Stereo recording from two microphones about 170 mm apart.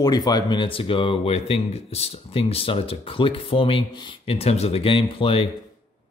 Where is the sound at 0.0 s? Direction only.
25° left (ahead or behind).